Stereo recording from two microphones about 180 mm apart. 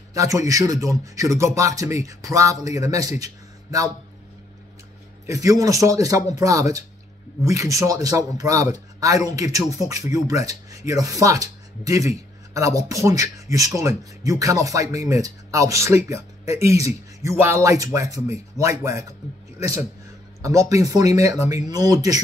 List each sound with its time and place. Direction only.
0.1 s a man's voice: 20° right (ahead or behind)
5.2 s speech: 20° right (ahead or behind)
20.4 s speech: 20° right (ahead or behind)